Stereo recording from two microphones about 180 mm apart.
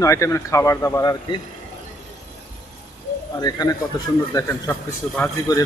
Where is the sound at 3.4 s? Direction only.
20° left (ahead or behind).